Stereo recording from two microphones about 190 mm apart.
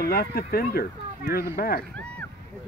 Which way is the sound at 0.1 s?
50° left (ahead or behind).